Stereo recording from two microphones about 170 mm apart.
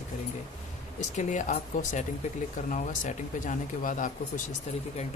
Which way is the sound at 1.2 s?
45° left (ahead or behind).